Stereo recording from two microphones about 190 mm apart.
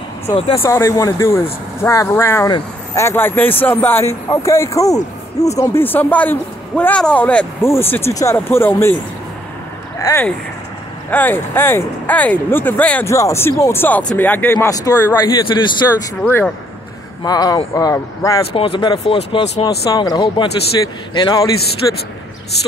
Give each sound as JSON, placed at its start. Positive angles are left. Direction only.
{"t": 0.5, "sound": "speech", "side_deg": 15}
{"t": 9.9, "sound": "speech", "side_deg": 15}
{"t": 16.2, "sound": "speech", "side_deg": 10}
{"t": 17.2, "sound": "a man's voice", "side_deg": 20}
{"t": 18.5, "sound": "a man's voice", "side_deg": 25}
{"t": 19.9, "sound": "a man's voice", "side_deg": 20}